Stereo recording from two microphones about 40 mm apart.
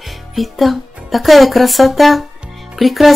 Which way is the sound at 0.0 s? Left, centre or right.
Centre.